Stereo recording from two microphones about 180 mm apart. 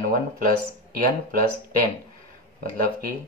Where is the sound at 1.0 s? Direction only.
50° right (ahead or behind).